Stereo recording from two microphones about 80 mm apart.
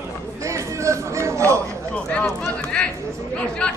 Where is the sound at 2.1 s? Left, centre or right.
Centre.